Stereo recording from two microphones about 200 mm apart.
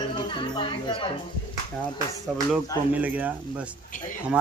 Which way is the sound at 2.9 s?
10° right (ahead or behind).